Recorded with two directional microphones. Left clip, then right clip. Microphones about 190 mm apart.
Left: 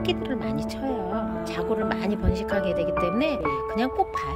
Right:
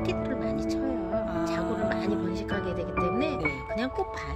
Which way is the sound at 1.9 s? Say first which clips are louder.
Left 1 dB; 40° left (ahead or behind).